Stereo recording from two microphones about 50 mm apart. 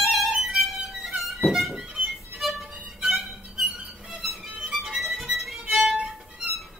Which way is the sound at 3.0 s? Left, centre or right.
Centre.